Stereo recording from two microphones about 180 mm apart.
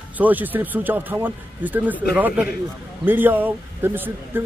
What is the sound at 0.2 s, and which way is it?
Speech, 10° right (ahead or behind).